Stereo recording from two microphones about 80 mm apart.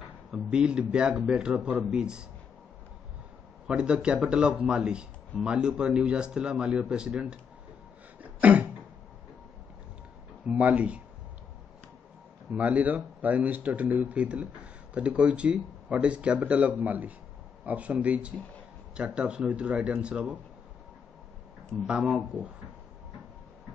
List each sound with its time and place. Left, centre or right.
0.3 s speech: centre
3.6 s speech: centre
8.2 s a sound: centre
10.5 s speech: centre
12.5 s speech: centre
21.8 s speech: centre